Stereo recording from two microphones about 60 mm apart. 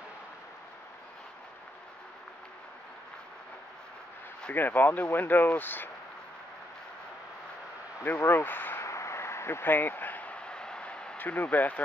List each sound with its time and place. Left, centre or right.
4.6 s speech: left
8.2 s speech: left
8.8 s a sound: left; by 11.1 s centre
11.1 s speech: left